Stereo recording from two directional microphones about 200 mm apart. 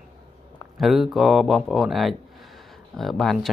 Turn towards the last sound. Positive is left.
turn(degrees=0)  # may be behind; listen again after turning